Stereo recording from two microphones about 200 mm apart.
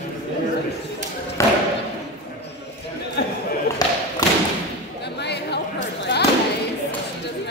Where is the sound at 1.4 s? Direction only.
15° left (ahead or behind).